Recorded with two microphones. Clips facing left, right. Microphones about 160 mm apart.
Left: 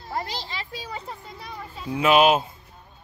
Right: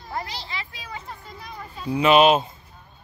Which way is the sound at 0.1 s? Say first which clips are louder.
Left 1 dB; 35° left (ahead or behind).